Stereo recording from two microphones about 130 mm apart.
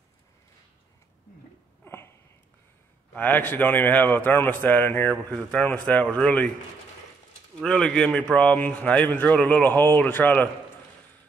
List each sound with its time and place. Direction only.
1.9 s a sound: 20° left (ahead or behind)
3.1 s a man's voice: 15° left (ahead or behind)
7.6 s a man's voice: 5° left (ahead or behind)